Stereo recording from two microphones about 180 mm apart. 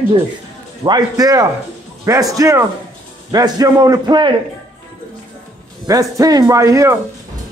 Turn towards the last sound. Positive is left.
turn(degrees=-15)  # may be behind; listen again after turning